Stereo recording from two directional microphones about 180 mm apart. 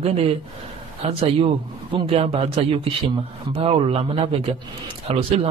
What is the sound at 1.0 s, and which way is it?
Speech, 35° right (ahead or behind).